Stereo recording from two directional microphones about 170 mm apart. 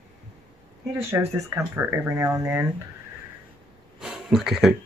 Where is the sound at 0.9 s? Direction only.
15° right (ahead or behind).